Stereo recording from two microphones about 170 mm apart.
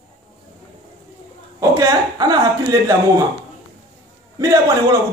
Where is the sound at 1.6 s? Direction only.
20° right (ahead or behind).